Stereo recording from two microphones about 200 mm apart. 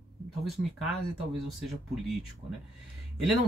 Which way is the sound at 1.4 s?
Centre (ahead or behind).